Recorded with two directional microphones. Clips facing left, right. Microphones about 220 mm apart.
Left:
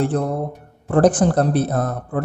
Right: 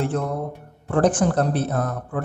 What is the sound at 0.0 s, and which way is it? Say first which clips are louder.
A man's voice: left 4 dB; 35° left (ahead or behind).